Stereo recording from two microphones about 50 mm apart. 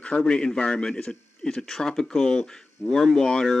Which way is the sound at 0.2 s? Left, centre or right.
Centre.